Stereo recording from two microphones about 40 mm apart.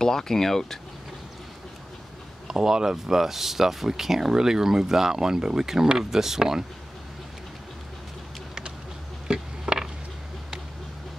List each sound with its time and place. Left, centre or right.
0.0 s speech: centre
2.4 s speech: centre
9.3 s a sound: centre